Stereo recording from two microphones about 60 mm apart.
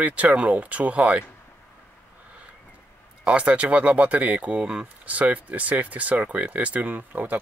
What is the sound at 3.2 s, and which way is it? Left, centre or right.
Speech, right.